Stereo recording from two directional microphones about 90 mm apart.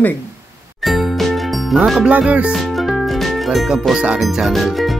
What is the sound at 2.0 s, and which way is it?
Music, 15° right (ahead or behind).